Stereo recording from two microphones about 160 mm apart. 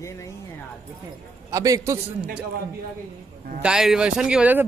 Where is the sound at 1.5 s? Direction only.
20° right (ahead or behind).